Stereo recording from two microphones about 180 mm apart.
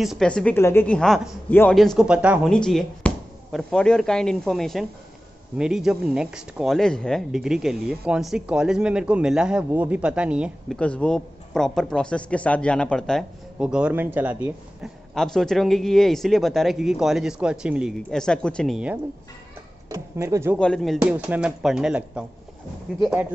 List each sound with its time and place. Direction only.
0.0 s a man's voice: centre (ahead or behind)
1.8 s speech: centre (ahead or behind)
2.5 s speech: 5° left (ahead or behind)
10.8 s speech: 5° left (ahead or behind)
19.9 s speech: 15° right (ahead or behind)
20.5 s speech: 5° left (ahead or behind)